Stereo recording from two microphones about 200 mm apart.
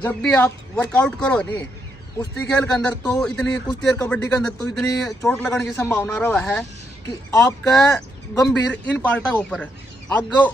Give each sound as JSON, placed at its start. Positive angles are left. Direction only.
{"t": 0.0, "sound": "speech", "side_deg": 5}